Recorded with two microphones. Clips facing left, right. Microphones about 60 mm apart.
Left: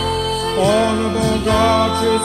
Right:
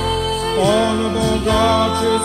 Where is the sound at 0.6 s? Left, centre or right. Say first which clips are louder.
Left 1 dB; left.